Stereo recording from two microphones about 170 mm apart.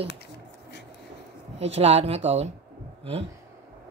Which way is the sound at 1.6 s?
40° right (ahead or behind).